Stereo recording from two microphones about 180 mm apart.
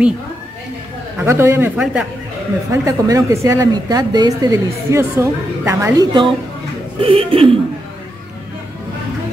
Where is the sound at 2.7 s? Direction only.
20° right (ahead or behind).